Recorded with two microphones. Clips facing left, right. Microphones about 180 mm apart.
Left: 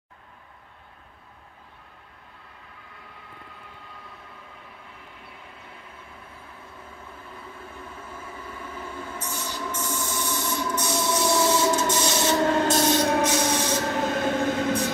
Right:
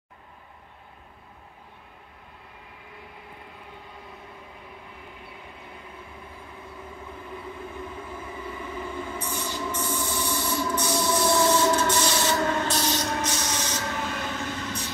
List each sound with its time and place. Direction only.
8.2 s train: 10° right (ahead or behind); by 12.2 s 10° left (ahead or behind)
12.2 s train: 25° left (ahead or behind)
12.4 s train: 40° left (ahead or behind)